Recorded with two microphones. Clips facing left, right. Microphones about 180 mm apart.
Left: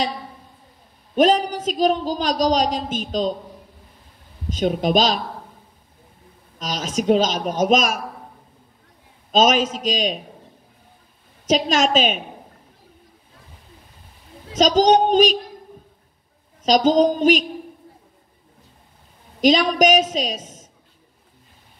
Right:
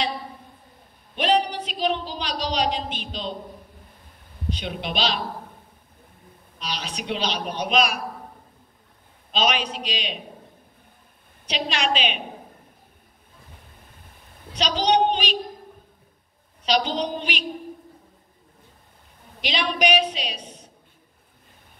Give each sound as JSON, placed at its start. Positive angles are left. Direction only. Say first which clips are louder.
{"t": 1.1, "sound": "a man's voice", "louder": "left 5 dB", "side_deg": 45}
{"t": 4.5, "sound": "a man's voice", "louder": "left 10 dB", "side_deg": 45}
{"t": 6.6, "sound": "a man's voice", "louder": "left 8 dB", "side_deg": 45}
{"t": 9.3, "sound": "a man's voice", "louder": "left 7 dB", "side_deg": 45}
{"t": 11.4, "sound": "a man's voice", "louder": "left 8 dB", "side_deg": 45}
{"t": 14.6, "sound": "a man's voice", "louder": "left 6 dB", "side_deg": 45}
{"t": 16.6, "sound": "a man's voice", "louder": "left 9 dB", "side_deg": 40}
{"t": 19.4, "sound": "a man's voice", "louder": "left 9 dB", "side_deg": 40}